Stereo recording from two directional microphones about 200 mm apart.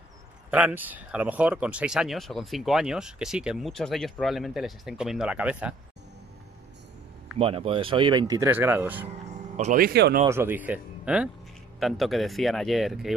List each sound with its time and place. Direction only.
0.5 s speech: 10° right (ahead or behind)
7.3 s speech: 30° right (ahead or behind); by 9.1 s 10° right (ahead or behind)
9.6 s speech: 40° right (ahead or behind)
10.2 s speech: 10° right (ahead or behind)